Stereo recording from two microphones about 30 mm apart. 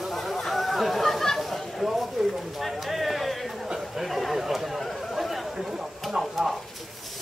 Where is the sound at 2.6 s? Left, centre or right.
Centre.